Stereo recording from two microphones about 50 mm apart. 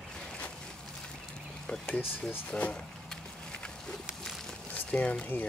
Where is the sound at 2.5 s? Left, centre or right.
Left.